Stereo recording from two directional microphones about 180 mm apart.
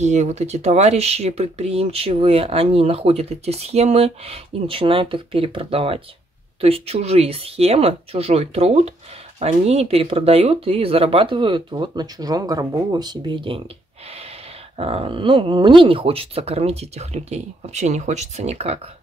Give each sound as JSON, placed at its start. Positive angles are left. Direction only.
{"t": 0.0, "sound": "speech", "side_deg": -40}
{"t": 14.8, "sound": "speech", "side_deg": -35}